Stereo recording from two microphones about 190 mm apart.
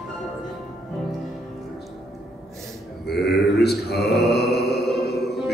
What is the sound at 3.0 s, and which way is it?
Mantra, 55° left (ahead or behind).